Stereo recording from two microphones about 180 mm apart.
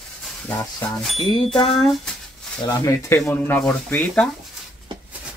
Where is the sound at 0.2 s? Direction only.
10° left (ahead or behind).